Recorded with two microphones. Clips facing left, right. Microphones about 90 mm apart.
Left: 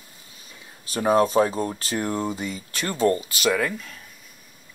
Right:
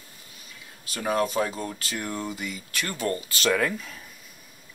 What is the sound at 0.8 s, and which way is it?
Speech, 30° left (ahead or behind).